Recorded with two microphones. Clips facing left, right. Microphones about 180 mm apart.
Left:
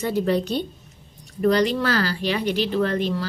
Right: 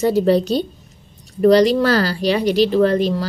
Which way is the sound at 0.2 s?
35° right (ahead or behind).